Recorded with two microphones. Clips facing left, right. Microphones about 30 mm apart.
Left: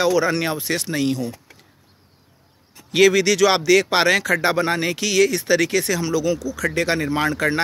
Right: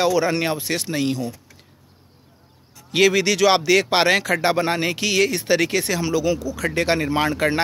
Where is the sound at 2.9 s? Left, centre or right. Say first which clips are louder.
Left 2 dB; centre.